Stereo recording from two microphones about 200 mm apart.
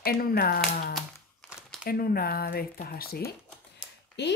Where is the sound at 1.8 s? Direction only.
45° left (ahead or behind).